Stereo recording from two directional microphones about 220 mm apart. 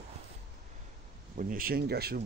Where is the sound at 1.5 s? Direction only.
40° right (ahead or behind).